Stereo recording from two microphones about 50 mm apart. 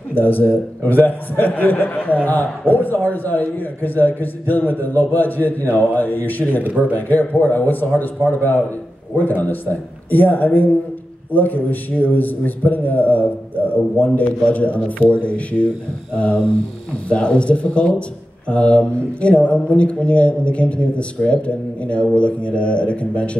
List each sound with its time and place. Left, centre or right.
0.1 s a man's voice: left